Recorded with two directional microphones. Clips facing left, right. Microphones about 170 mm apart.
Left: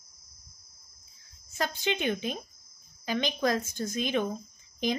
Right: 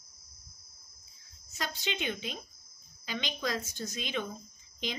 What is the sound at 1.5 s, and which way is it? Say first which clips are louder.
A woman's voice: left 7 dB; 50° left (ahead or behind).